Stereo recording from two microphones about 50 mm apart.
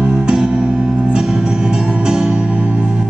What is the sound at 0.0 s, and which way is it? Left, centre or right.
Music, centre.